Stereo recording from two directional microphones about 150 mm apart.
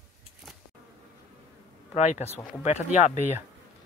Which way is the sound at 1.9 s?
50° left (ahead or behind).